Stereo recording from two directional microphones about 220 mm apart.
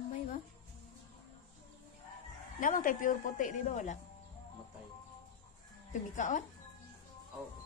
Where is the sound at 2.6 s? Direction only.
40° left (ahead or behind).